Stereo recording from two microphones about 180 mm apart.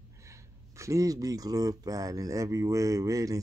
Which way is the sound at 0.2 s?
15° right (ahead or behind).